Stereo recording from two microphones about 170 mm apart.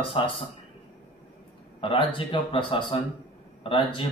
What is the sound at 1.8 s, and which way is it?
A man's voice, 30° left (ahead or behind).